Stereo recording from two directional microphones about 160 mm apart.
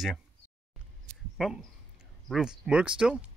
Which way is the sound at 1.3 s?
Centre (ahead or behind).